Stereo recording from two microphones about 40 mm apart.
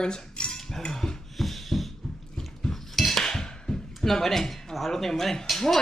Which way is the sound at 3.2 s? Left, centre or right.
Centre.